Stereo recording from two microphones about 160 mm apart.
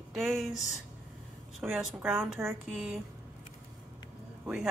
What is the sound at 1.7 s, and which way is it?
Speech, centre (ahead or behind).